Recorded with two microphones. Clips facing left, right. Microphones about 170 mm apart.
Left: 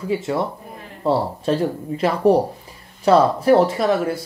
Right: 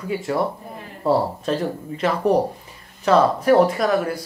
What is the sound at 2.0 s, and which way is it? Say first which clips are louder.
Speech: left 3 dB; 35° left (ahead or behind).